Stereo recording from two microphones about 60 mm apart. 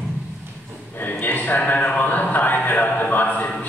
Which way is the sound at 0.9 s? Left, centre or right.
Left.